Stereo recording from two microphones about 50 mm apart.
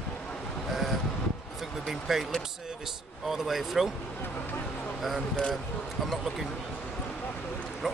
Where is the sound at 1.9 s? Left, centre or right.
Centre.